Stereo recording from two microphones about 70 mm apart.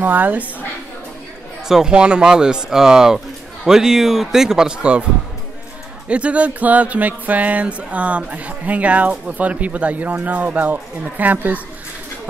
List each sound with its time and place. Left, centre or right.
0.0 s music: right
1.7 s speech: centre
6.0 s music: centre